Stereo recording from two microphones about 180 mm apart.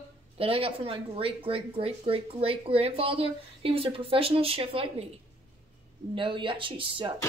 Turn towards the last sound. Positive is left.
turn(degrees=-30)  # may be behind; listen again after turning